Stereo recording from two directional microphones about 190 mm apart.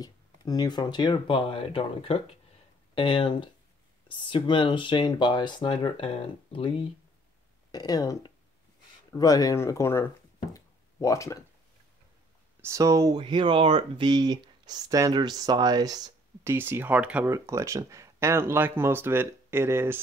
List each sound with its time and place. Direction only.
0.0 s speech: 20° left (ahead or behind)
12.6 s speech: 15° right (ahead or behind)